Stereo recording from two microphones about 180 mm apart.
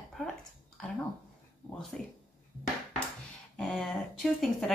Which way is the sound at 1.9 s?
5° left (ahead or behind).